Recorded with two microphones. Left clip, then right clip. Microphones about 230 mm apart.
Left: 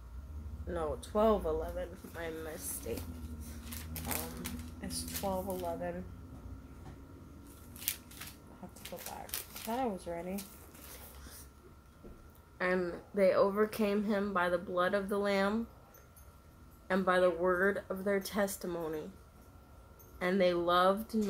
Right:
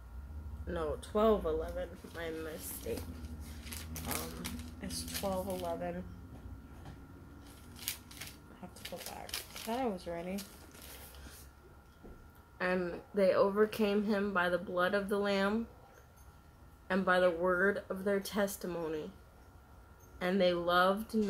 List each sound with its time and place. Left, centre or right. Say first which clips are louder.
0.7 s a woman's voice: even; centre
3.9 s a woman's voice: even; centre
9.1 s a woman's voice: right 1 dB; centre
12.5 s a woman's voice: left 1 dB; centre
16.8 s a woman's voice: even; centre
20.2 s a woman's voice: left 1 dB; centre